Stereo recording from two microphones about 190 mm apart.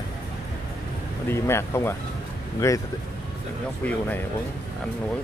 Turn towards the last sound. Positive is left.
turn(degrees=10)  # may be behind; listen again after turning